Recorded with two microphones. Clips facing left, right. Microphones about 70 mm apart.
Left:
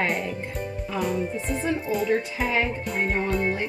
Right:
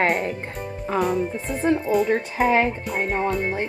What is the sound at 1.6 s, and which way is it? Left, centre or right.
Speech, right.